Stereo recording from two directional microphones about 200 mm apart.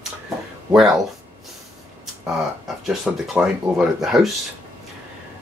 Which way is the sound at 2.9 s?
5° right (ahead or behind).